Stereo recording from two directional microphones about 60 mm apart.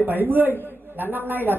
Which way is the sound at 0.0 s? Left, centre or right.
Right.